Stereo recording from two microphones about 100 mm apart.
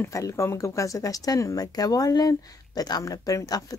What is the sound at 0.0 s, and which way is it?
Speech, 30° left (ahead or behind).